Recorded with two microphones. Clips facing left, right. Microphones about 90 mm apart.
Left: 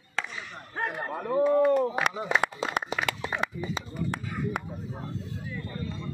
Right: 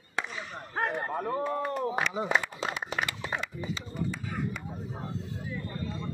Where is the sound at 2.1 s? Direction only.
10° right (ahead or behind).